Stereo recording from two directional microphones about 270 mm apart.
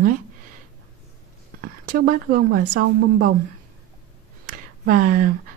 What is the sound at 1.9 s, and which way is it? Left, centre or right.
Speech, right.